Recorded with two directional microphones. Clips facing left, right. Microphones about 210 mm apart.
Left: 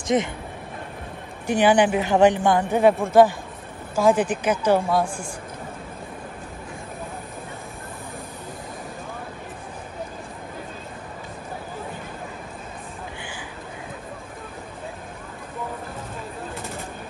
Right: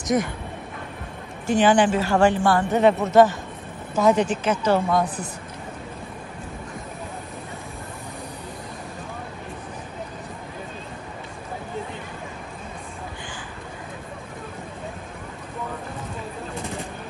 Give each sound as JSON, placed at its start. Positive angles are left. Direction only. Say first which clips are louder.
{"t": 0.0, "sound": "speech", "louder": "left 1 dB", "side_deg": 25}
{"t": 1.5, "sound": "speech", "louder": "even", "side_deg": 10}
{"t": 4.1, "sound": "speech", "louder": "even", "side_deg": 50}
{"t": 4.5, "sound": "speech", "louder": "left 3 dB", "side_deg": 10}
{"t": 5.0, "sound": "a man's voice", "louder": "right 1 dB", "side_deg": 25}